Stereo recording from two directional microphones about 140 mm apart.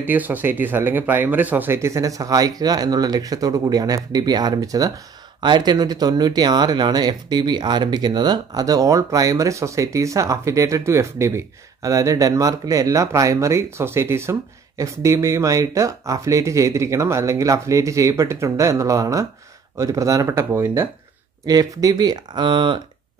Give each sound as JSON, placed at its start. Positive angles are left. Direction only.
{"t": 0.0, "sound": "speech", "side_deg": -15}